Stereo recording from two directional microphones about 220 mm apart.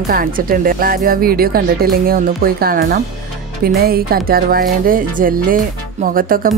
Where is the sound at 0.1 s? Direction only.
40° right (ahead or behind).